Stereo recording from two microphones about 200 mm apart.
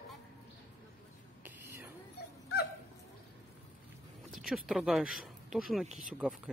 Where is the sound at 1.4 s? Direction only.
10° right (ahead or behind).